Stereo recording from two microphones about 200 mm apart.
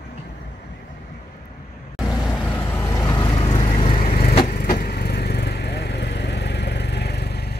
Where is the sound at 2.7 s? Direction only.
15° left (ahead or behind).